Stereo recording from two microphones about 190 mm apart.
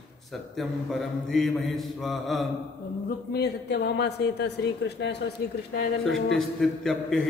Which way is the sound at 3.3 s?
60° left (ahead or behind).